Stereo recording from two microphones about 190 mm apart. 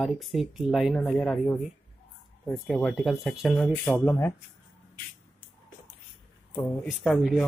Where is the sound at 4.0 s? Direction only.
10° left (ahead or behind).